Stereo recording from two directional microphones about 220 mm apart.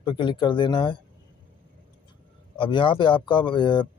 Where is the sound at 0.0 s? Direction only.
20° left (ahead or behind).